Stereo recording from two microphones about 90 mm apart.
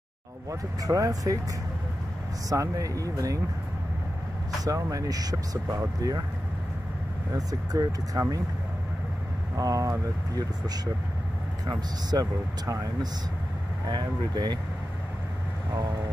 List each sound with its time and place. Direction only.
0.5 s speech: 40° right (ahead or behind)
2.5 s speech: 40° right (ahead or behind)
4.6 s speech: 40° right (ahead or behind)
7.3 s speech: 45° right (ahead or behind)
9.6 s speech: 40° right (ahead or behind)
13.8 s speech: 50° right (ahead or behind)
15.7 s speech: 50° right (ahead or behind)